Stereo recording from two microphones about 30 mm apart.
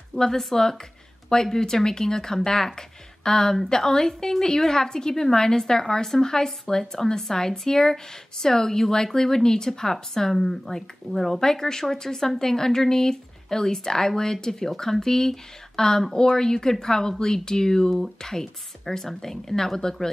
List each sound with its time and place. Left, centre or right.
0.4 s a woman's voice: centre
10.3 s a woman's voice: centre